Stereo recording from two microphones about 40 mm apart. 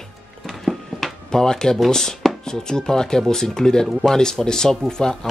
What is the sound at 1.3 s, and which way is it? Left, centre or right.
Speech, centre.